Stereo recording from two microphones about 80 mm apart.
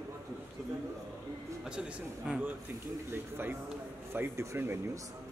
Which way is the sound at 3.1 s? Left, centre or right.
Right.